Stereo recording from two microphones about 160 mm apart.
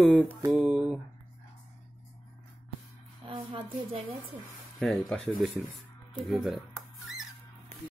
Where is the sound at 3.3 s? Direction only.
35° right (ahead or behind).